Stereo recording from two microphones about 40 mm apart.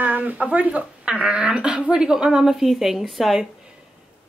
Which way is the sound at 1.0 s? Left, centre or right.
Right.